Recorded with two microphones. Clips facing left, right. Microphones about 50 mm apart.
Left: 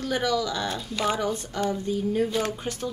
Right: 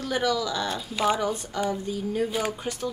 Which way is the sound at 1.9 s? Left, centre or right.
Centre.